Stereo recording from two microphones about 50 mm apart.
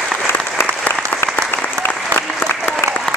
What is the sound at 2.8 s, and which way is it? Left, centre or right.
Applause, left.